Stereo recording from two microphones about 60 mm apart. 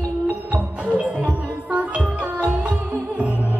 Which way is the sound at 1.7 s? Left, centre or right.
Right.